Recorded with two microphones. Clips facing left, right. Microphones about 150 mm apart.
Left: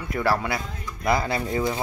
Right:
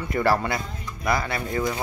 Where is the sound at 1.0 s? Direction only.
25° left (ahead or behind).